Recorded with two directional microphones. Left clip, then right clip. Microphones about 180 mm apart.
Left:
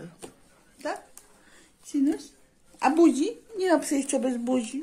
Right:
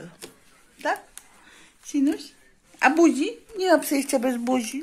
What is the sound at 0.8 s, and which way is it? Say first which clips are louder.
Speech: right 7 dB; 30° right (ahead or behind).